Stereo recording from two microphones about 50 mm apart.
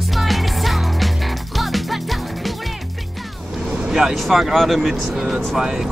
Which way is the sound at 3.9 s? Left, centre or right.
Centre.